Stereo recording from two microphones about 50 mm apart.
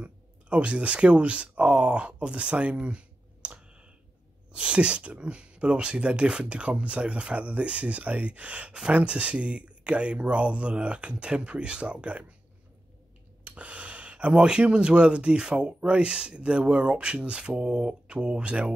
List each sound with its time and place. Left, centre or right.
0.0 s speech: right
2.2 s clicking: right
4.5 s speech: right
13.4 s speech: right